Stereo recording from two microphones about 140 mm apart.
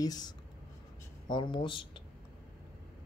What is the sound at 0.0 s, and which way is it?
Speech, 30° left (ahead or behind).